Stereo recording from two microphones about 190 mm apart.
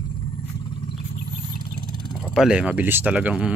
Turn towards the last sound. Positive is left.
turn(degrees=-5)  # may be behind; listen again after turning